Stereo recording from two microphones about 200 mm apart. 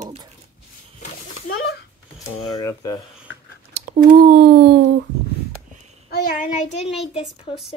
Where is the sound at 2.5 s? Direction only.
15° left (ahead or behind).